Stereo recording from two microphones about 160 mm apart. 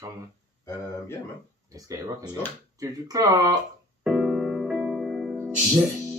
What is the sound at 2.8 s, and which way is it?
Speech, 20° right (ahead or behind).